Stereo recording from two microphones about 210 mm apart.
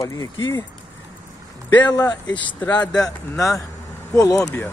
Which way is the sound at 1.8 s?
20° left (ahead or behind).